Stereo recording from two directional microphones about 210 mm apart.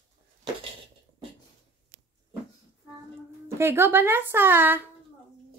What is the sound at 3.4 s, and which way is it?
Speech, 10° right (ahead or behind).